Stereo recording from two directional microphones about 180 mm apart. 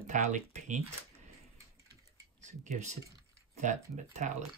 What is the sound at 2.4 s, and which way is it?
Speech, 40° right (ahead or behind).